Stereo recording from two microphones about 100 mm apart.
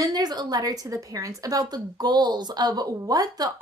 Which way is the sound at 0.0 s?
40° right (ahead or behind).